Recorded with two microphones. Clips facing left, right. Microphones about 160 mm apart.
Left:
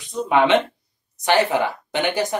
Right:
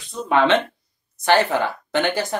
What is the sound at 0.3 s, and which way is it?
Speech, 15° left (ahead or behind).